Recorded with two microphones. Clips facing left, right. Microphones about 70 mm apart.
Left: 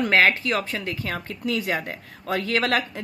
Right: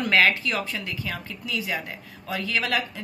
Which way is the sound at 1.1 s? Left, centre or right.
Left.